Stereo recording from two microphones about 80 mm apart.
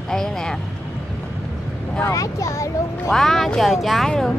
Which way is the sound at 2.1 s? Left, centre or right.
Left.